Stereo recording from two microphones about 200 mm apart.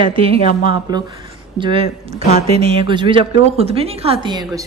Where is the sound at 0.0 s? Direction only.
25° right (ahead or behind).